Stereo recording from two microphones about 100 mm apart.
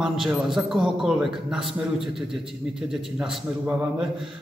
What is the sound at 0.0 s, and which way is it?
A man's voice, 5° right (ahead or behind).